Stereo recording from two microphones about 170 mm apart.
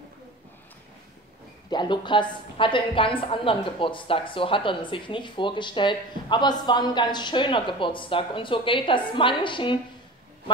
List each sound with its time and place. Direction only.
1.7 s a woman's voice: 25° left (ahead or behind)